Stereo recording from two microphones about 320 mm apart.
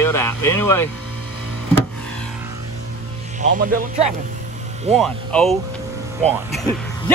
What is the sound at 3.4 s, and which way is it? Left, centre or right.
Speech, right.